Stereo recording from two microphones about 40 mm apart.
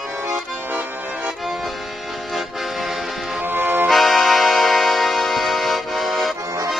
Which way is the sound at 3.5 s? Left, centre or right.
Right.